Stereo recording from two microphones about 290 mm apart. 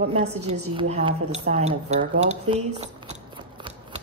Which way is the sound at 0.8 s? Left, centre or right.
Centre.